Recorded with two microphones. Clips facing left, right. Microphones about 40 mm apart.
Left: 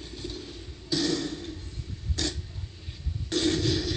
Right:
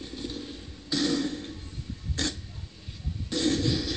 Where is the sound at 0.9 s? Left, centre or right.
Centre.